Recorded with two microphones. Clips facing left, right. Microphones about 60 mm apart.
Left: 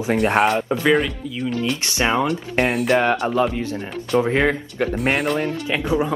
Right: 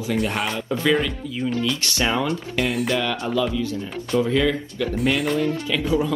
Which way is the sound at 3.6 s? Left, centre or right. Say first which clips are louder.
Even; left.